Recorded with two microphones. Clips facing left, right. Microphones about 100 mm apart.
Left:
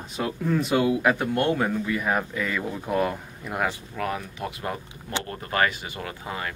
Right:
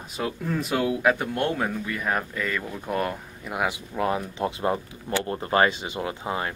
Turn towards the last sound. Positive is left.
turn(degrees=-25)  # may be behind; listen again after turning